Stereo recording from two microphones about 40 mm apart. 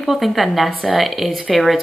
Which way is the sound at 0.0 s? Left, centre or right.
Centre.